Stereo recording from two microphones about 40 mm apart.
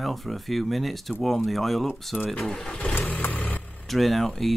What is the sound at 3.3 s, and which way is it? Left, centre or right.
Vehicle, left.